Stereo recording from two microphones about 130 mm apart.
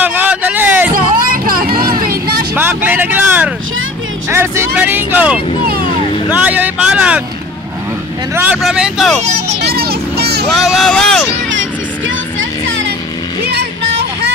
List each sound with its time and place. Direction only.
0.0 s a sound: 15° right (ahead or behind)
0.9 s hubbub: 90° right
1.8 s vehicle: 30° right (ahead or behind)
2.5 s speech: 15° right (ahead or behind)
8.5 s speech: 5° right (ahead or behind)
9.2 s speech: 60° right (ahead or behind)
10.5 s speech: centre (ahead or behind)